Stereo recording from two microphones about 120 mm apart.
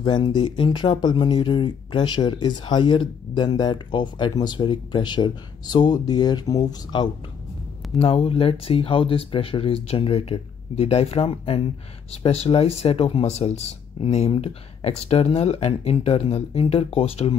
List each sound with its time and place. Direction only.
0.0 s speech: 40° left (ahead or behind)
8.0 s speech: 50° left (ahead or behind)